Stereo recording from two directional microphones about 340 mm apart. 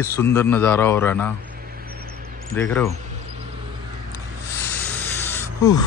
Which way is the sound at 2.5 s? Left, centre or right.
Centre.